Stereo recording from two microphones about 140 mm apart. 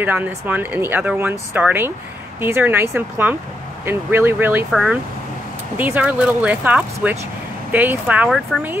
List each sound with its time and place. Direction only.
0.0 s speech: 10° right (ahead or behind)
5.8 s speech: 10° right (ahead or behind)
8.3 s speech: centre (ahead or behind)